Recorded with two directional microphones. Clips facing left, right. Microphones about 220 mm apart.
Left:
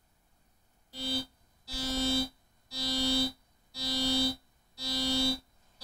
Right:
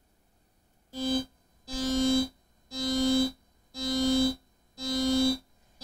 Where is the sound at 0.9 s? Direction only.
50° right (ahead or behind).